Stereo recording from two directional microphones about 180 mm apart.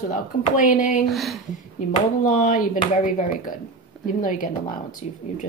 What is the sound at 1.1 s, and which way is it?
Speech, centre (ahead or behind).